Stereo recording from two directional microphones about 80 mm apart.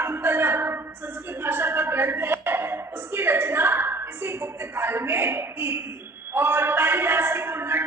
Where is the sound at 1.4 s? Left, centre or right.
Right.